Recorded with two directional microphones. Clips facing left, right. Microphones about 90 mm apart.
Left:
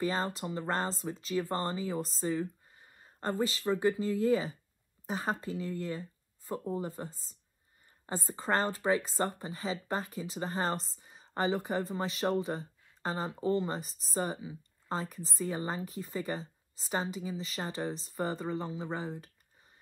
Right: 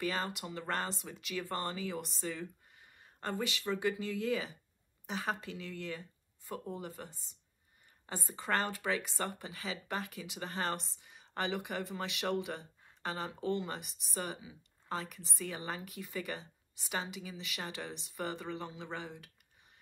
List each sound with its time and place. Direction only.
0.0 s speech: 30° left (ahead or behind)
8.1 s speech: 30° left (ahead or behind)